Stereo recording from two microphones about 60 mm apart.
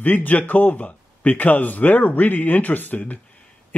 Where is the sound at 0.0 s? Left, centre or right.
Left.